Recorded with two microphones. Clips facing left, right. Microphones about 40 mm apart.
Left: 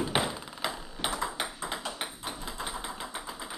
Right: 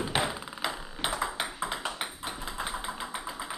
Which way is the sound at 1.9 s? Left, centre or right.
Centre.